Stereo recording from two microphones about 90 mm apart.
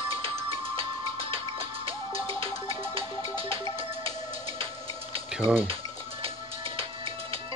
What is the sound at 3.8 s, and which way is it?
Music, 90° right.